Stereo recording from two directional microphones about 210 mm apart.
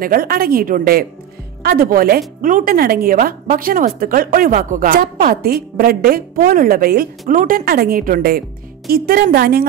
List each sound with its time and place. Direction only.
0.0 s speech: 45° right (ahead or behind)